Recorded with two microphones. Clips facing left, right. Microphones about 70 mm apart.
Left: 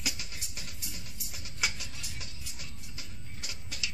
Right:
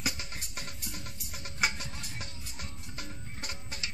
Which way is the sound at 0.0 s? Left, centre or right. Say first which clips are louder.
Right 3 dB; right.